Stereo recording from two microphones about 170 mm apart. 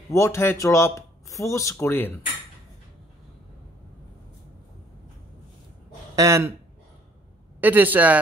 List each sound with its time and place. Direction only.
0.1 s speech: 15° left (ahead or behind)
6.1 s a woman's voice: 15° right (ahead or behind)
7.6 s a woman's voice: 10° right (ahead or behind)